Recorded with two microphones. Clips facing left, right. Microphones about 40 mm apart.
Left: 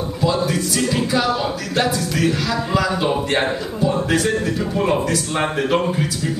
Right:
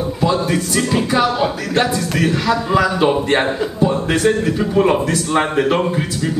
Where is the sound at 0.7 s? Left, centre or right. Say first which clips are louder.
Right 3 dB; right.